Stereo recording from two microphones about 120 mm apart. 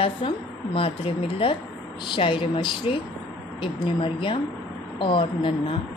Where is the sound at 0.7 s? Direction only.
50° left (ahead or behind).